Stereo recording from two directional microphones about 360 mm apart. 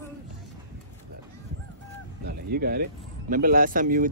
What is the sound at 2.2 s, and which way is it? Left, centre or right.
Speech, right.